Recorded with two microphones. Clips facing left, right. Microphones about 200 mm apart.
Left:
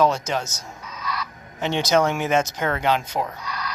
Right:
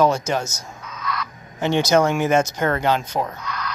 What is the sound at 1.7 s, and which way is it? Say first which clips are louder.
Speech: right 3 dB; centre (ahead or behind).